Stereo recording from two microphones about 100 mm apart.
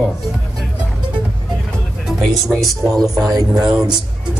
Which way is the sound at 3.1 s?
40° right (ahead or behind).